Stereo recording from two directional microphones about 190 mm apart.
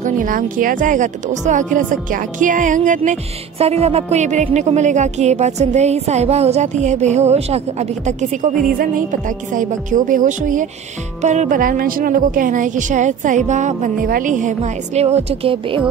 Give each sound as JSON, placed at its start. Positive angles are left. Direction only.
{"t": 0.0, "sound": "a woman's voice", "side_deg": -45}